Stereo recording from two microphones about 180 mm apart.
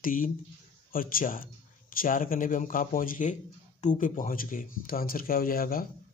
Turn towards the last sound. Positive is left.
turn(degrees=50)  # may be behind; listen again after turning